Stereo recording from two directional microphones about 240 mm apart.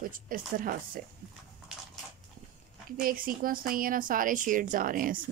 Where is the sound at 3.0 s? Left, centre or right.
Right.